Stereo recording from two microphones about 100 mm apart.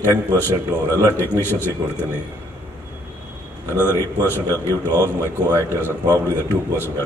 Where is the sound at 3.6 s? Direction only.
20° right (ahead or behind).